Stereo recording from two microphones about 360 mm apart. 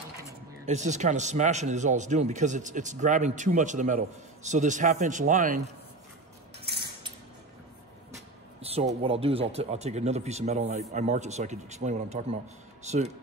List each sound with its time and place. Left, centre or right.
0.7 s speech: centre
8.5 s speech: centre